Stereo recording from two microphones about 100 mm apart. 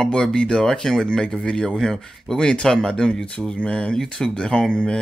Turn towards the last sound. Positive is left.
turn(degrees=10)  # may be behind; listen again after turning